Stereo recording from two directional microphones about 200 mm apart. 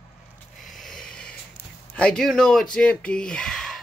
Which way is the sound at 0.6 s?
Centre (ahead or behind).